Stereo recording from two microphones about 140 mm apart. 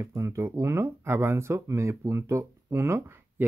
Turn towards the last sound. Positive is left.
turn(degrees=-20)  # may be behind; listen again after turning